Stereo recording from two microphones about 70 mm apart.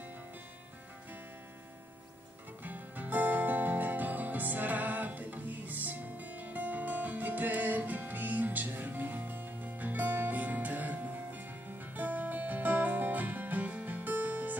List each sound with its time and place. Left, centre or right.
2.6 s music: right